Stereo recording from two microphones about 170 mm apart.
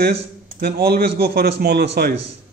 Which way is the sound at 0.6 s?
65° right (ahead or behind).